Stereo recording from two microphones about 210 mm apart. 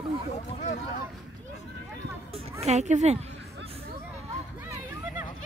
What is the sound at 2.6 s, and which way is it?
Speech, 35° right (ahead or behind).